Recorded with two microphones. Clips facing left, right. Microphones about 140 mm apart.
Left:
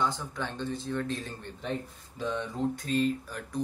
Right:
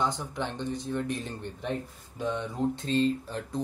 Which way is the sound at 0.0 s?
20° right (ahead or behind).